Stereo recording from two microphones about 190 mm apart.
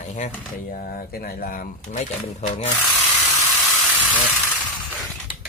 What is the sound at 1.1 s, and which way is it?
Speech, 50° left (ahead or behind).